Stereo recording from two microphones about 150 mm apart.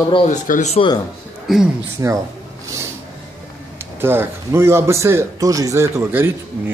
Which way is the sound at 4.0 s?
15° right (ahead or behind).